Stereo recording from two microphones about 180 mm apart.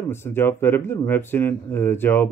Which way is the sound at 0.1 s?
15° left (ahead or behind).